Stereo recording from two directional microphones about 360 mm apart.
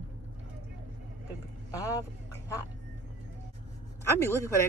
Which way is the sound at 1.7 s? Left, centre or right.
Centre.